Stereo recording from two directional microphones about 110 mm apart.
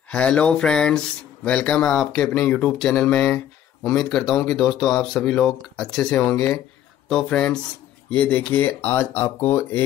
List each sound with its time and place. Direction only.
0.1 s speech: 10° left (ahead or behind)